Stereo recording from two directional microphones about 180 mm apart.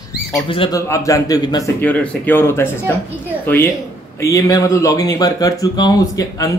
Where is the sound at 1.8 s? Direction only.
10° left (ahead or behind).